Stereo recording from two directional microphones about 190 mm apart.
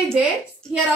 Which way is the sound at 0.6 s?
5° left (ahead or behind).